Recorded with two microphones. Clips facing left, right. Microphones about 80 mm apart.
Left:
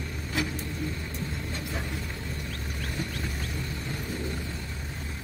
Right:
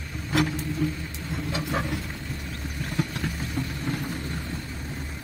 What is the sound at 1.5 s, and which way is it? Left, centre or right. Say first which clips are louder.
Vehicle: right 6 dB; right.